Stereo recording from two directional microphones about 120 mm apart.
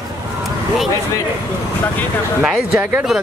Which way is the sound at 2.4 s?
10° right (ahead or behind).